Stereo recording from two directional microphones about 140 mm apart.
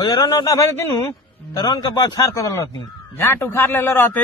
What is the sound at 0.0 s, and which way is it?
A man's voice, 30° left (ahead or behind).